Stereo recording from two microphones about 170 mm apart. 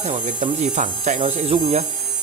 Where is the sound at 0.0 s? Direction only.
40° right (ahead or behind).